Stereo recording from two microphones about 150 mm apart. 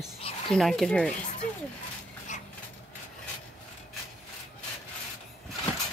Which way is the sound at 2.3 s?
55° left (ahead or behind).